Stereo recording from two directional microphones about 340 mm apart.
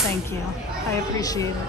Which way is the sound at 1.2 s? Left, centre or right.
Centre.